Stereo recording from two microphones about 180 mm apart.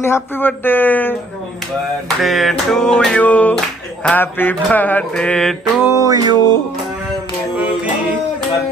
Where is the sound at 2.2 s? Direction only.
Centre (ahead or behind).